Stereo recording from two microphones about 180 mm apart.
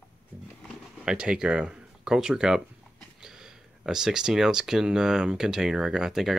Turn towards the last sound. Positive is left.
turn(degrees=0)  # may be behind; listen again after turning